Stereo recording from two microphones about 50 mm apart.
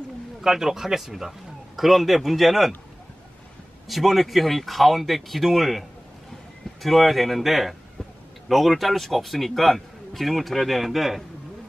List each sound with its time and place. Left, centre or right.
0.4 s a man's voice: centre
3.8 s a man's voice: centre